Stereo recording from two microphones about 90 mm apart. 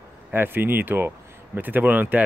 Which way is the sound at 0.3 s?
25° right (ahead or behind).